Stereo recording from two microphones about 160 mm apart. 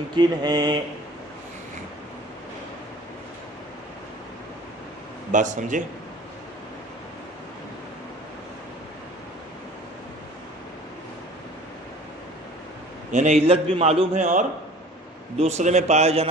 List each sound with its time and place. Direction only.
0.1 s a sound: 25° right (ahead or behind)
5.3 s a man's voice: 50° right (ahead or behind)
13.1 s a man's voice: 45° right (ahead or behind)